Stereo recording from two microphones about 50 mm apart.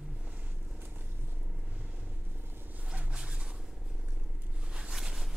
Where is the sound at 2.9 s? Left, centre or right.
Centre.